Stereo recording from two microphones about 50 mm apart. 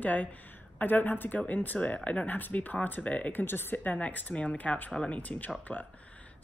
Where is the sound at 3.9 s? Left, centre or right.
Left.